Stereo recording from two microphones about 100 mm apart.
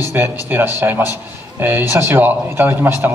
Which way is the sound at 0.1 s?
20° right (ahead or behind).